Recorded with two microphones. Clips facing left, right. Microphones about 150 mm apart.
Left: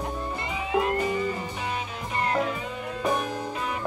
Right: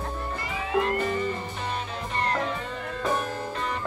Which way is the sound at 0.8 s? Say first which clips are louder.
Even; 10° left (ahead or behind).